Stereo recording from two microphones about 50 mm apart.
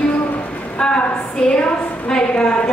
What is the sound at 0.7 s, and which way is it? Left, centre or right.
A woman's voice, centre.